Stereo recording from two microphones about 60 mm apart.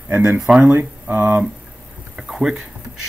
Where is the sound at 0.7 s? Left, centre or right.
Right.